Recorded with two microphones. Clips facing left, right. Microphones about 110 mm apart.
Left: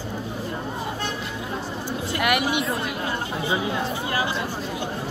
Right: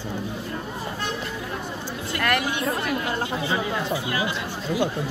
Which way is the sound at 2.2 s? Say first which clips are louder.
Left 1 dB; 15° left (ahead or behind).